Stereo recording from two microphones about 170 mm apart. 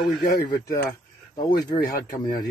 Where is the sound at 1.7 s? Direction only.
35° left (ahead or behind).